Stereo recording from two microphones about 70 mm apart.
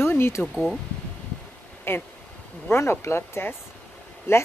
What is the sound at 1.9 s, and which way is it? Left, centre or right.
A woman's voice, left.